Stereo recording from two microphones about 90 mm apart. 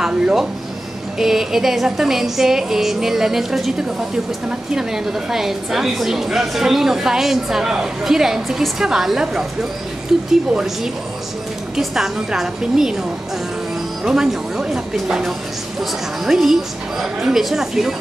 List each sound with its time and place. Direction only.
0.0 s a woman's voice: 5° right (ahead or behind)
14.0 s a woman's voice: 5° right (ahead or behind)